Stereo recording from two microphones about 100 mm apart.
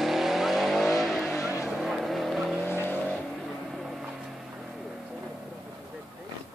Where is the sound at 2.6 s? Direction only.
20° left (ahead or behind).